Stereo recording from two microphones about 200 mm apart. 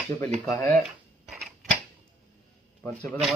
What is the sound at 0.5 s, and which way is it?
Speech, 15° left (ahead or behind).